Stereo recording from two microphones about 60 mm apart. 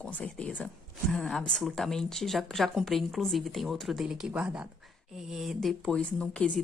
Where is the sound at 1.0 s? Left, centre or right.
Centre.